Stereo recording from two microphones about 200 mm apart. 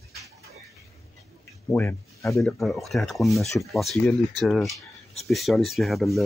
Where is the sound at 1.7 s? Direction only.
10° left (ahead or behind).